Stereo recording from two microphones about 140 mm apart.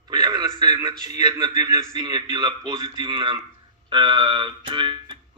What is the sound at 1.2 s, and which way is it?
Speech, 30° right (ahead or behind).